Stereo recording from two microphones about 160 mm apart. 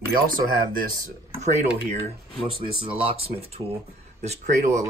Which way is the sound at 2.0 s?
35° right (ahead or behind).